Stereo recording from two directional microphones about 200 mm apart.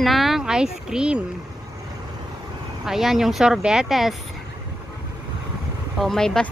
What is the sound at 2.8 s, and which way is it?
A woman's voice, centre (ahead or behind).